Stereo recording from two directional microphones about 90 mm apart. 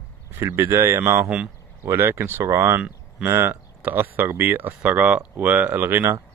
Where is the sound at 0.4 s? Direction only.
30° right (ahead or behind).